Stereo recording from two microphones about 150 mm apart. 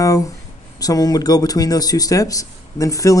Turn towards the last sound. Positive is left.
turn(degrees=20)  # may be behind; listen again after turning